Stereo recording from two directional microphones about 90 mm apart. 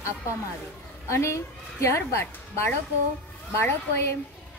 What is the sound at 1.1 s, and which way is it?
A woman's voice, 30° left (ahead or behind).